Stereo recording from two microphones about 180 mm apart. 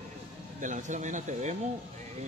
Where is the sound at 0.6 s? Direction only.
45° right (ahead or behind).